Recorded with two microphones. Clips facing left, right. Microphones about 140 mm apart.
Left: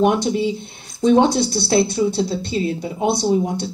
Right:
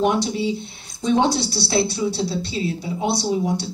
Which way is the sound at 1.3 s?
50° left (ahead or behind).